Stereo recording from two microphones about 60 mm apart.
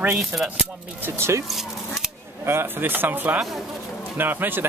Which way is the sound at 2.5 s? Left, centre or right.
Right.